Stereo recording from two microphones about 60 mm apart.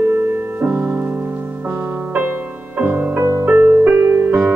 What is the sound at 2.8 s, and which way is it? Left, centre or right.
Music, right.